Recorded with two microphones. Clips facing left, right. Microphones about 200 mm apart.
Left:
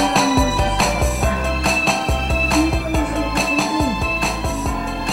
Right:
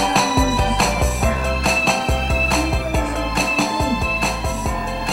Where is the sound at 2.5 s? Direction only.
Centre (ahead or behind).